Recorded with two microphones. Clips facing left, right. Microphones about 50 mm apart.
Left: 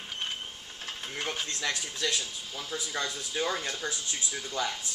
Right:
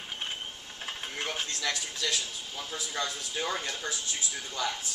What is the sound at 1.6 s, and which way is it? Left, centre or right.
Speech, centre.